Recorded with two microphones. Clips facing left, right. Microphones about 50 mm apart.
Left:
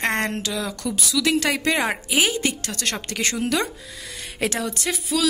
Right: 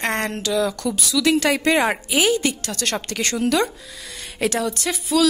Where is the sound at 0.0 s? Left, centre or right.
Left.